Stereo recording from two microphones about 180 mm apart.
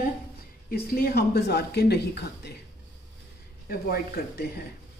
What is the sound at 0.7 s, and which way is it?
Speech, 55° left (ahead or behind).